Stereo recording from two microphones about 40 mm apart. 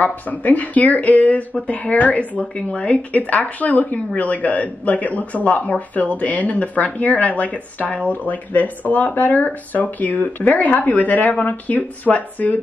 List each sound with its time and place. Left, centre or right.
0.0 s speech: left